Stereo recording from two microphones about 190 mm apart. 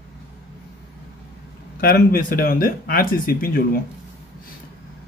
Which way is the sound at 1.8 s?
55° left (ahead or behind).